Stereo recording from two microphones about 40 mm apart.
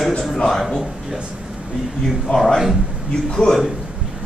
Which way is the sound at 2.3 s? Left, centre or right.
Centre.